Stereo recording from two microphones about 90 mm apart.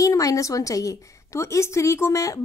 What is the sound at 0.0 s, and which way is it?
Speech, 40° left (ahead or behind).